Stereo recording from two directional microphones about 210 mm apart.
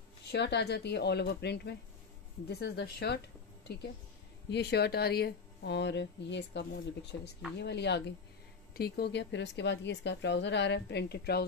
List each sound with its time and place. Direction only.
0.3 s speech: 50° left (ahead or behind)
4.5 s a woman's voice: 50° left (ahead or behind)